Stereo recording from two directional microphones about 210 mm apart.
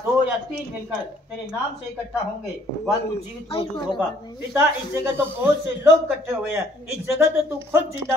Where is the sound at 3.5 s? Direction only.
25° left (ahead or behind).